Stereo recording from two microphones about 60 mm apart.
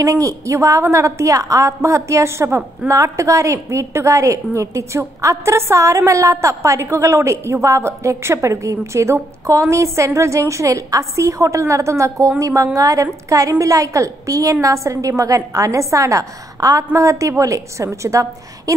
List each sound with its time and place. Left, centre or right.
0.0 s a woman's voice: right
2.9 s a woman's voice: right
16.9 s a woman's voice: right